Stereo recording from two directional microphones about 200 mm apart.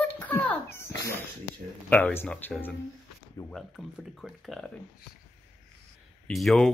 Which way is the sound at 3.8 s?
Centre (ahead or behind).